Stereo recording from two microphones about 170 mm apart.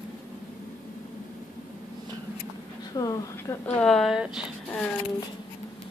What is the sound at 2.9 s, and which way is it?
Speech, 20° left (ahead or behind).